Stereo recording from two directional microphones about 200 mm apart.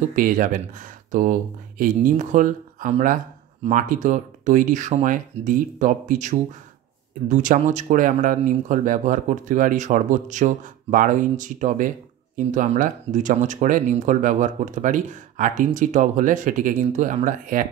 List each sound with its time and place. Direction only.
0.1 s speech: 40° right (ahead or behind)